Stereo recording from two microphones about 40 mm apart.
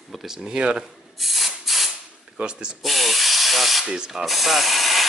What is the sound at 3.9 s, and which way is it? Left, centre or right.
Speech, centre.